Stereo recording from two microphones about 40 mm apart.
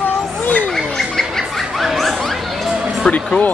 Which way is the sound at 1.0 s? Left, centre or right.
Centre.